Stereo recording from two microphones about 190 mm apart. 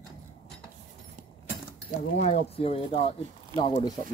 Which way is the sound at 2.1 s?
35° left (ahead or behind).